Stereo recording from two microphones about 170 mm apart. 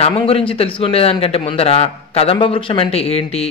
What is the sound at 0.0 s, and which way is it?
A man's voice, 35° left (ahead or behind).